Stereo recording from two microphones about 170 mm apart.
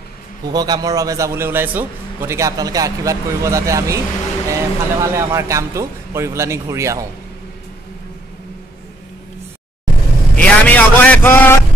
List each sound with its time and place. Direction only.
0.5 s a man's voice: 25° right (ahead or behind)
10.3 s vehicle: 10° left (ahead or behind)